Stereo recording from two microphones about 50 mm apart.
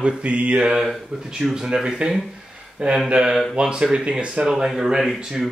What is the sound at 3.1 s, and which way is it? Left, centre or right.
Speech, centre.